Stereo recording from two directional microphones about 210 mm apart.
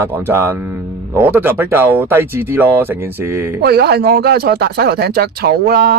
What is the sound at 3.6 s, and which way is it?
Speech, 50° right (ahead or behind).